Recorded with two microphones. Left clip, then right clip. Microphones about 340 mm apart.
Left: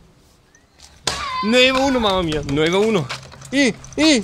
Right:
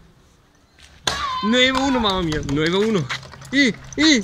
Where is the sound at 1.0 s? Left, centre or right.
Centre.